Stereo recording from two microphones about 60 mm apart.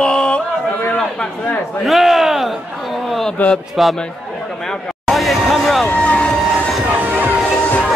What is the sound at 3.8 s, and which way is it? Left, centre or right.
Speech, centre.